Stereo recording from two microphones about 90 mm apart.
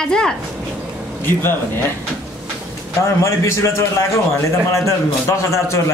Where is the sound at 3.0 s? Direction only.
30° left (ahead or behind).